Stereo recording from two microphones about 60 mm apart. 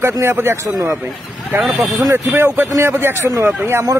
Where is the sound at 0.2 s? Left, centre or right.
Right.